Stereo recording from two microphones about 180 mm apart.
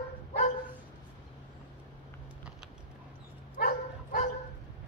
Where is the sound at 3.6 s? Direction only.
55° left (ahead or behind).